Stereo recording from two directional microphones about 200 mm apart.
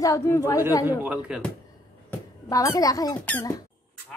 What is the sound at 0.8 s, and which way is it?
Speech, 10° right (ahead or behind).